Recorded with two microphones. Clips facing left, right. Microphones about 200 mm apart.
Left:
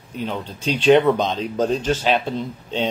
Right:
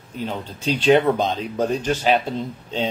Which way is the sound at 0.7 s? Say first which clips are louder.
Left 2 dB; 5° right (ahead or behind).